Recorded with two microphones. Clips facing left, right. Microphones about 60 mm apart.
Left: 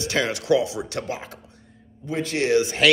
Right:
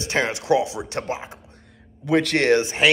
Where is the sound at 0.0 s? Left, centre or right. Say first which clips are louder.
Right 1 dB; right.